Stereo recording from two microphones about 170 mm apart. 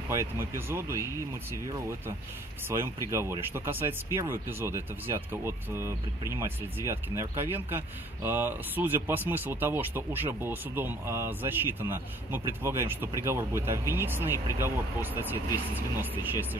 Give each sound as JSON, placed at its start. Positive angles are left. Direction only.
{"t": 0.1, "sound": "speech", "side_deg": -15}